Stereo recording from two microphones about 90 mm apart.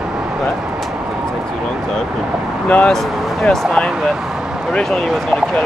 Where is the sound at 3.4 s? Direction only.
10° left (ahead or behind).